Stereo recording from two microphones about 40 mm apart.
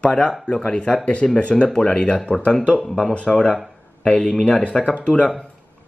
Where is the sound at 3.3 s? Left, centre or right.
Left.